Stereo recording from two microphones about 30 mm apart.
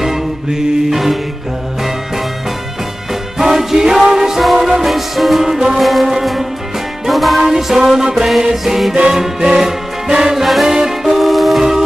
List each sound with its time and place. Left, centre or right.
0.0 s music: centre
3.3 s music: centre
5.8 s music: centre
7.4 s music: centre
10.3 s music: centre
10.7 s music: centre
11.1 s music: centre